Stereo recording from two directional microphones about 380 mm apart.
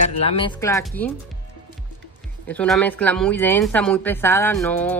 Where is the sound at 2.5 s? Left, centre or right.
Centre.